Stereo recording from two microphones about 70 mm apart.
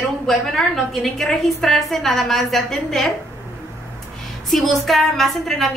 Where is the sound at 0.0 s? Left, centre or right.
Centre.